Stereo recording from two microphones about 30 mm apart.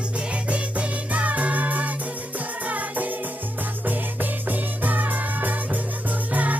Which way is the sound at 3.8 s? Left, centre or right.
Right.